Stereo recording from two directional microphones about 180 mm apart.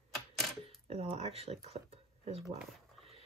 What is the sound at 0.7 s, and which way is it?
Speech, 35° right (ahead or behind).